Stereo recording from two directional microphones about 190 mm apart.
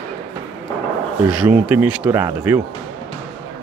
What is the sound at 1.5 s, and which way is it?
Speech, 10° right (ahead or behind).